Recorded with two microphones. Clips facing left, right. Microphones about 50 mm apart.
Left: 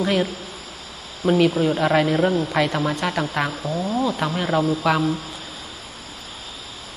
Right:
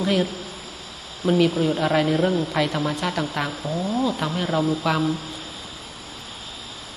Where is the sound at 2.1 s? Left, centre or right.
Left.